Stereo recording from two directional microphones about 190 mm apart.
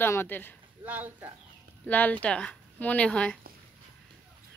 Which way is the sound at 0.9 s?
10° right (ahead or behind).